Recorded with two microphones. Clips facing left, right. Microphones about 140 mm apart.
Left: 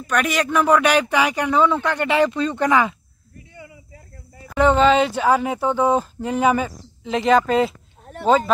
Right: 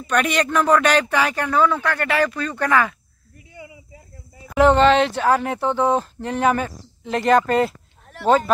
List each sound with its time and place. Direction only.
0.0 s speech: centre (ahead or behind); by 3.0 s 20° left (ahead or behind)
3.5 s a sound: 15° right (ahead or behind)
4.5 s speech: centre (ahead or behind)